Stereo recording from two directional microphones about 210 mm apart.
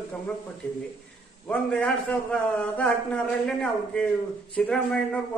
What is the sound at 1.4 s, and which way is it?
A man's voice, 5° left (ahead or behind).